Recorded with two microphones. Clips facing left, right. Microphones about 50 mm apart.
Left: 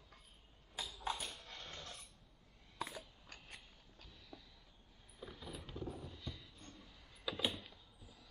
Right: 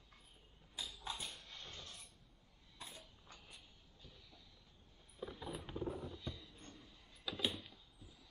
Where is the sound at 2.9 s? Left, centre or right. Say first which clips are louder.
Left 6 dB; left.